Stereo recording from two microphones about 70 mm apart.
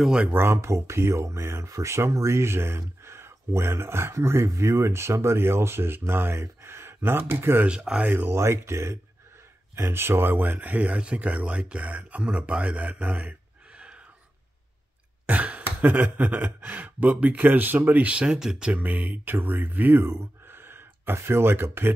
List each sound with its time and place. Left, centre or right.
0.3 s speech: right
0.6 s speech: right
7.6 s speech: centre
8.1 s speech: right
8.4 s speech: right; by 14.0 s centre
15.2 s speech: right
18.9 s speech: right